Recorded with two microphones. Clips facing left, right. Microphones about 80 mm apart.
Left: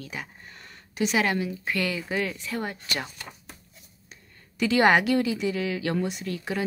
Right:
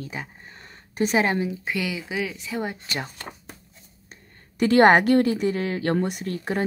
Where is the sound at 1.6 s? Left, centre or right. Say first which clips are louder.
Even; centre.